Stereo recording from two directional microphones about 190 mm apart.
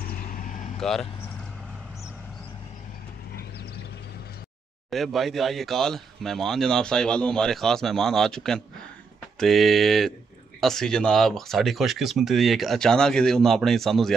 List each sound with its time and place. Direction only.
0.0 s vehicle: 50° left (ahead or behind)
0.7 s speech: centre (ahead or behind)
4.9 s speech: centre (ahead or behind)